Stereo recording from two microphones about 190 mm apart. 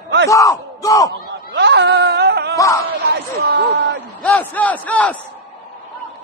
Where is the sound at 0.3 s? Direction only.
15° left (ahead or behind).